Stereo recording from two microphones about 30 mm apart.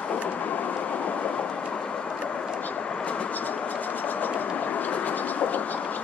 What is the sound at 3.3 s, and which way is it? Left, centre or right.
Train, left.